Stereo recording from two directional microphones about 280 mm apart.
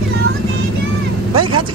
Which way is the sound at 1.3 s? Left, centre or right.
Right.